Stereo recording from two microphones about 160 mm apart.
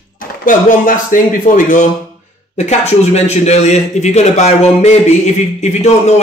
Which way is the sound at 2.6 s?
40° left (ahead or behind).